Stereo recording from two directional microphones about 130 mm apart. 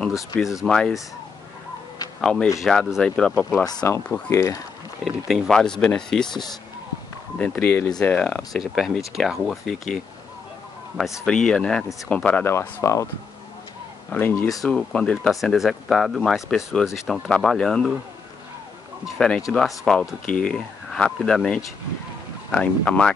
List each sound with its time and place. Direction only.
0.7 s speech: 5° left (ahead or behind)
2.2 s speech: 5° left (ahead or behind)
3.6 s speech: 25° left (ahead or behind)
5.0 s speech: centre (ahead or behind)
11.2 s speech: 5° left (ahead or behind); by 13.1 s 25° left (ahead or behind)
14.1 s speech: 15° left (ahead or behind)
14.6 s speech: 5° left (ahead or behind)
19.0 s speech: 5° left (ahead or behind)